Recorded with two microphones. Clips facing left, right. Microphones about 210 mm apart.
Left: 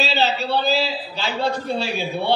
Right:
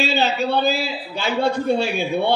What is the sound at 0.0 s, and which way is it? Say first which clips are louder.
A man's voice: right 2 dB; 50° right (ahead or behind).